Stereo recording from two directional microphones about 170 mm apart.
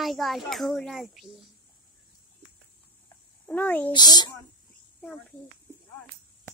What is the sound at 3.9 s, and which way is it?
Speech, 25° left (ahead or behind).